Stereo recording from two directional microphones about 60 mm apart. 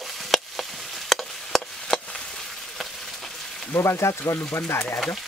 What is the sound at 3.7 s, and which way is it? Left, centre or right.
Speech, left.